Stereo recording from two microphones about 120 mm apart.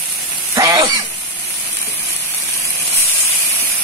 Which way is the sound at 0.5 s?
30° right (ahead or behind).